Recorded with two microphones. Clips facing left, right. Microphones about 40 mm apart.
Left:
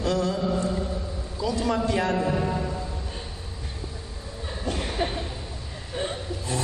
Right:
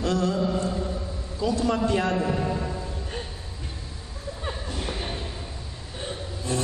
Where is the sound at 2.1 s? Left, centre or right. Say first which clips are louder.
Left 1 dB; centre.